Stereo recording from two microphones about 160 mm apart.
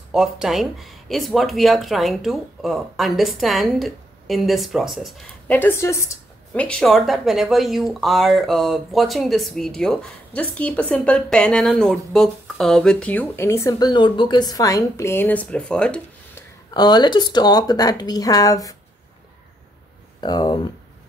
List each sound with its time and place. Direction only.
0.1 s speech: 5° right (ahead or behind)
5.5 s a woman's voice: 15° left (ahead or behind)
6.6 s speech: 5° left (ahead or behind)
16.7 s a woman's voice: 25° left (ahead or behind)
20.2 s a woman's voice: 25° left (ahead or behind)